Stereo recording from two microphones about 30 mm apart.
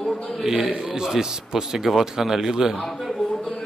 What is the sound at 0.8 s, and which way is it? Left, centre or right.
A man's voice, right.